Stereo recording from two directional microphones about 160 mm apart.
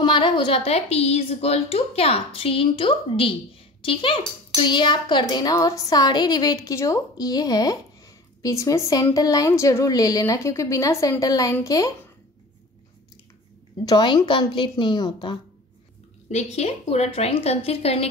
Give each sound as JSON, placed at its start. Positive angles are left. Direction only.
{"t": 0.0, "sound": "a woman's voice", "side_deg": 30}
{"t": 13.8, "sound": "a child's voice", "side_deg": 25}
{"t": 16.3, "sound": "a woman's voice", "side_deg": 45}